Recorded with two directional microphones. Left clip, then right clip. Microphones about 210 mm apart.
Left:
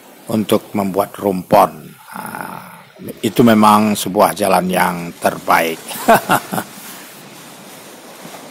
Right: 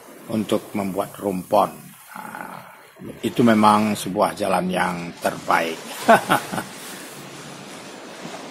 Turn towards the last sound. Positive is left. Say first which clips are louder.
# left 4 dB
turn(degrees=20)  # may be behind; listen again after turning